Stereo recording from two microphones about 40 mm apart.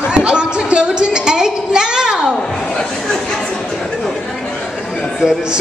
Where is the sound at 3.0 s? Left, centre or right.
Centre.